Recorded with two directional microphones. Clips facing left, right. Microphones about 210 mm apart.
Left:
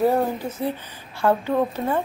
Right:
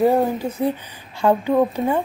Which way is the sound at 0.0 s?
15° right (ahead or behind).